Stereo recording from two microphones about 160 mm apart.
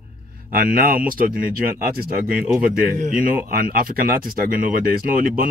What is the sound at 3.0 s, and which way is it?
A man's voice, 60° right (ahead or behind).